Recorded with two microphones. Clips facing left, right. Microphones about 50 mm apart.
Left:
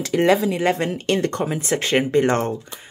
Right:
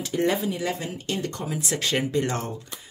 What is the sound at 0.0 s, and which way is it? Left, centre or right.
Speech, left.